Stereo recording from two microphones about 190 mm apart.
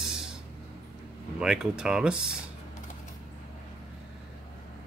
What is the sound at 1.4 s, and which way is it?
Speech, 5° right (ahead or behind).